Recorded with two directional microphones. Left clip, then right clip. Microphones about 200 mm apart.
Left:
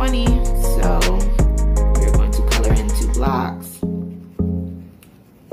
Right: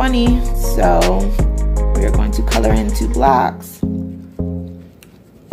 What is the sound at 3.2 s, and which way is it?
Speech, 45° right (ahead or behind).